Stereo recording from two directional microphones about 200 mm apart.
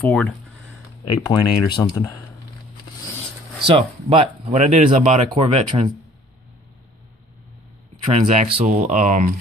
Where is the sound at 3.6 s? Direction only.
25° right (ahead or behind).